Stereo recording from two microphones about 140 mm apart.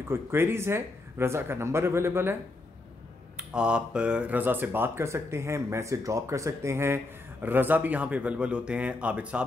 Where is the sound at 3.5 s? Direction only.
5° right (ahead or behind).